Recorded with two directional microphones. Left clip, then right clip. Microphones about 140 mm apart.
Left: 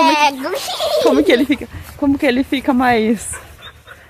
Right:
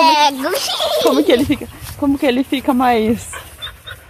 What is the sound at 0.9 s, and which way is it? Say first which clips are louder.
Speech: left 1 dB; 5° left (ahead or behind).